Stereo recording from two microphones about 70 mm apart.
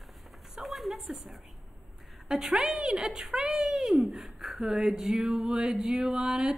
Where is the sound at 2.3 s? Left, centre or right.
Centre.